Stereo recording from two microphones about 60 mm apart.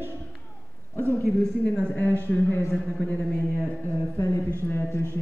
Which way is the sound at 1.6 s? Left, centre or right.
Centre.